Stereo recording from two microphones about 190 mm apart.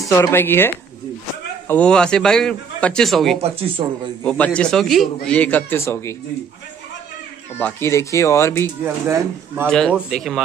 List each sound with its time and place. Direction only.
0.1 s a man's voice: 15° left (ahead or behind)
3.8 s a man's voice: 30° right (ahead or behind)
4.2 s a man's voice: 5° left (ahead or behind)
7.5 s a man's voice: 10° left (ahead or behind)
8.8 s speech: 15° right (ahead or behind)
9.7 s a man's voice: centre (ahead or behind)